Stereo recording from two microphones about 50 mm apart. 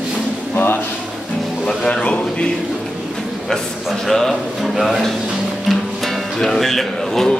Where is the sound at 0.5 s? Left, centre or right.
Left.